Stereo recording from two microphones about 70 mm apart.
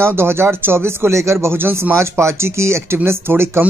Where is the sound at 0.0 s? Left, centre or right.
Right.